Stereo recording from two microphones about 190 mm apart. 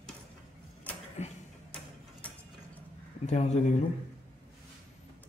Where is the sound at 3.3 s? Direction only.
35° left (ahead or behind).